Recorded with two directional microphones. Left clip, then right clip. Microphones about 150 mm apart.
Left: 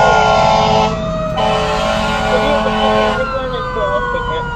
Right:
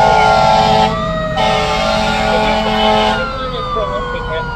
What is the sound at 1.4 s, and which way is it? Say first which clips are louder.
Vehicle: right 1 dB; 50° right (ahead or behind).